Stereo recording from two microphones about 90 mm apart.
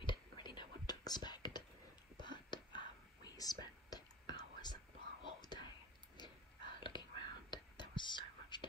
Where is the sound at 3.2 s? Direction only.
45° left (ahead or behind).